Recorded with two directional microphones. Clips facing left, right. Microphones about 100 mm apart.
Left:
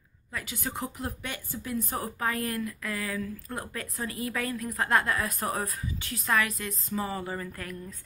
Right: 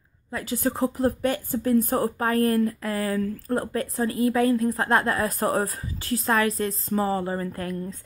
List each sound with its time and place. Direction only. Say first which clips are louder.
0.3 s speech: right 9 dB; 35° right (ahead or behind)